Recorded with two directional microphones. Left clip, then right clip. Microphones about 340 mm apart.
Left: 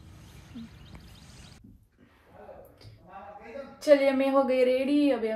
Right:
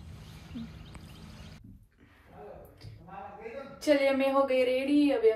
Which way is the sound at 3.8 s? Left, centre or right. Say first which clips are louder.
Left 4 dB; left.